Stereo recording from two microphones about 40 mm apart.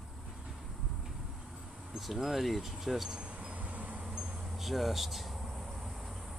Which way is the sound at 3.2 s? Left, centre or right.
Right.